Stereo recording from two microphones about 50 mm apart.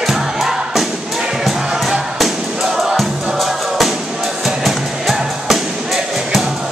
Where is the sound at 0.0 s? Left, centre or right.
Centre.